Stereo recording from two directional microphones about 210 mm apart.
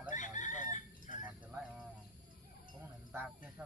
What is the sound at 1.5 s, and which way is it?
Bird, 5° right (ahead or behind).